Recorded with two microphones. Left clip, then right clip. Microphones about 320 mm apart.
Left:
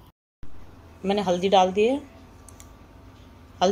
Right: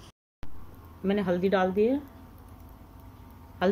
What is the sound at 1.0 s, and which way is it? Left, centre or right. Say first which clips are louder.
Speech: left 4 dB; left.